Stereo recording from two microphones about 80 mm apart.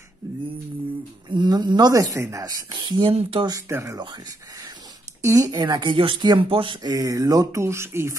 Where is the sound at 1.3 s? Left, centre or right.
Right.